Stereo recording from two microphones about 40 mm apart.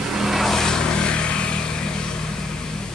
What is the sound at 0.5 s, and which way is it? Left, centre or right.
Vehicle, centre.